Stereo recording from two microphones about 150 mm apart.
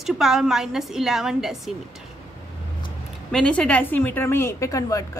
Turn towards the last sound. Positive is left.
turn(degrees=20)  # may be behind; listen again after turning